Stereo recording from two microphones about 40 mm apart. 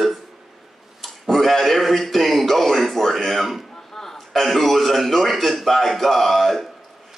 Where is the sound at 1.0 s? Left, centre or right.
Centre.